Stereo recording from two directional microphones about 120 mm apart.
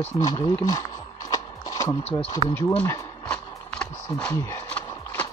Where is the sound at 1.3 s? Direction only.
25° left (ahead or behind).